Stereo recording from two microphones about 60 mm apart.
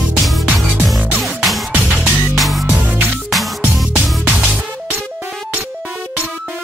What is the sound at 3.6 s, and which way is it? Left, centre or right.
Music, right.